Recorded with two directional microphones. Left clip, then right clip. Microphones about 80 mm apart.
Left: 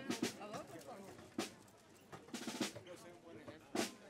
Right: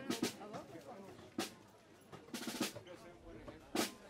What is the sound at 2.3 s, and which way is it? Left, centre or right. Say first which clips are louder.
Percussion: right 2 dB; right.